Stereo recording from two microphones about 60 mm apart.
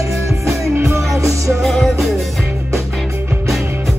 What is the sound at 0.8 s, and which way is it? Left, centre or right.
Music, right.